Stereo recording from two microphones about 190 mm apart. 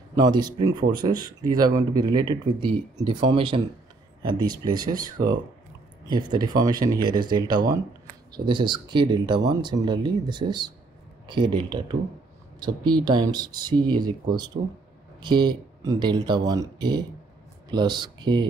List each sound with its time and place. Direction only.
0.1 s speech: 20° right (ahead or behind)
15.2 s speech: 25° right (ahead or behind)